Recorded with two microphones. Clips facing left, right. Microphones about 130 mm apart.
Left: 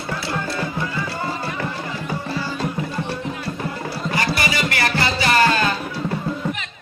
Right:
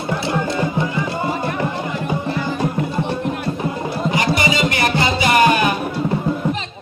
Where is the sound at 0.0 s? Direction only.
20° right (ahead or behind).